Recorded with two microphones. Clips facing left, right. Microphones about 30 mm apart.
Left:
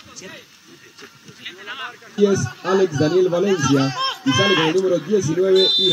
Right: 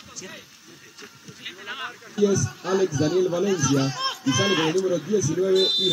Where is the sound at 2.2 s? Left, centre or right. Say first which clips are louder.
Left 4 dB; left.